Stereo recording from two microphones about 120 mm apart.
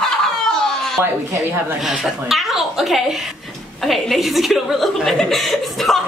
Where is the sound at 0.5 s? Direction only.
5° left (ahead or behind).